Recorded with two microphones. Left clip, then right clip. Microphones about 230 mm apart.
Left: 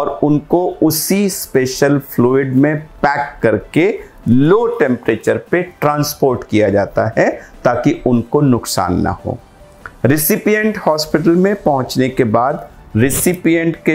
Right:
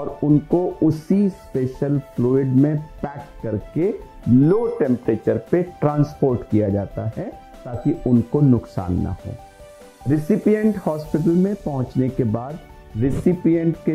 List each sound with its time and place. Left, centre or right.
0.0 s speech: left
0.8 s speech: centre
10.1 s speech: centre
11.9 s speech: centre
12.3 s speech: centre
13.0 s speech: centre